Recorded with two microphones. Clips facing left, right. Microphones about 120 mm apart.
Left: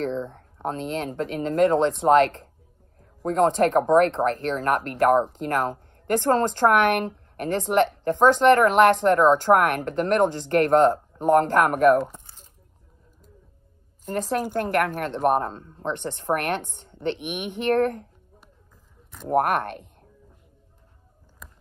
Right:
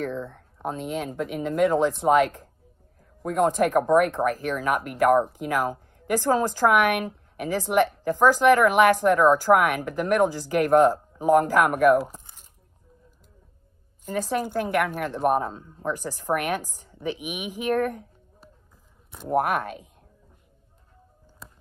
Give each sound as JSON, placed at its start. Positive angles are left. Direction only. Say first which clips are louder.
{"t": 0.1, "sound": "speech", "louder": "left 3 dB", "side_deg": 25}
{"t": 0.6, "sound": "a woman's voice", "louder": "left 1 dB", "side_deg": -5}
{"t": 14.0, "sound": "a woman's voice", "louder": "left 1 dB", "side_deg": 0}